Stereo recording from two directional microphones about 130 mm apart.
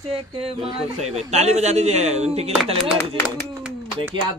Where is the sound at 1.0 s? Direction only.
55° right (ahead or behind).